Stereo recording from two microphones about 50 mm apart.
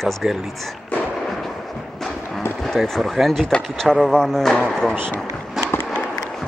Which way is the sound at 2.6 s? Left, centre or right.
Centre.